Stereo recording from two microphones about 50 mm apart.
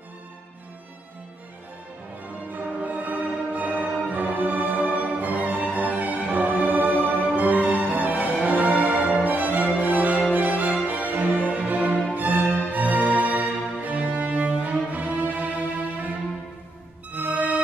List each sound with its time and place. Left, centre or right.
2.5 s music: right
17.1 s music: right